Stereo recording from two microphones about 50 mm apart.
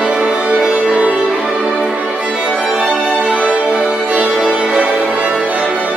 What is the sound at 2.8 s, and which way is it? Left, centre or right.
Music, right.